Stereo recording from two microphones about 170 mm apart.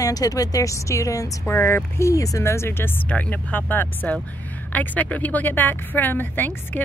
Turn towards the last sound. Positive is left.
turn(degrees=10)  # may be behind; listen again after turning